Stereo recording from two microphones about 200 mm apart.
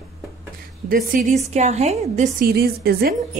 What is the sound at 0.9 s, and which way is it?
Speech, 45° right (ahead or behind).